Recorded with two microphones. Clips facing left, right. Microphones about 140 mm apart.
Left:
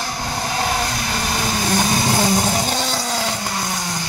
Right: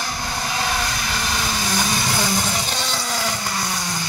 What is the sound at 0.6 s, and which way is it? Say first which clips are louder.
Vehicle: left 3 dB; 35° left (ahead or behind).